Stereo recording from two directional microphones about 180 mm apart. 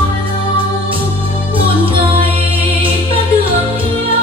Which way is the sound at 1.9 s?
30° right (ahead or behind).